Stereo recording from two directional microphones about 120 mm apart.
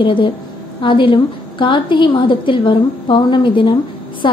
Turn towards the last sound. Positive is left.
turn(degrees=40)  # may be behind; listen again after turning